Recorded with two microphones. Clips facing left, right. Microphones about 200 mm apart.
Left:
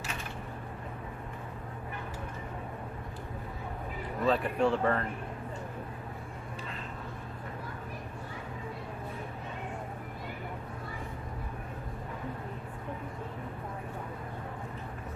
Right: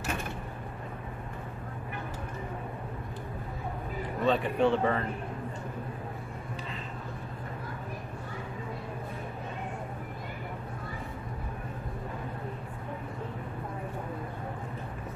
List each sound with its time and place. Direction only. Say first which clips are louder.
4.2 s speech: right 2 dB; centre (ahead or behind)